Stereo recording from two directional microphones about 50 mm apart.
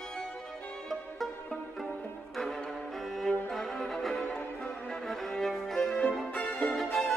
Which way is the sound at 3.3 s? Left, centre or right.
Centre.